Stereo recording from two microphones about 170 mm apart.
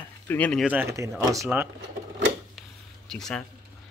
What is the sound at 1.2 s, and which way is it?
Speech, 20° right (ahead or behind).